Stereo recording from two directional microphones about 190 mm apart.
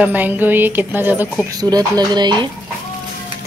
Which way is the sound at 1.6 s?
20° right (ahead or behind).